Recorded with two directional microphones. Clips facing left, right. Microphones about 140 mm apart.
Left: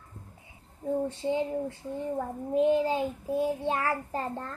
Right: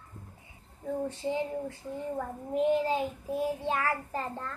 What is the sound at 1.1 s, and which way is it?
Child singing, 25° left (ahead or behind).